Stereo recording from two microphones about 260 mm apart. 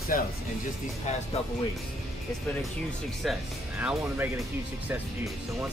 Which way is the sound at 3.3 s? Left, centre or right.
Centre.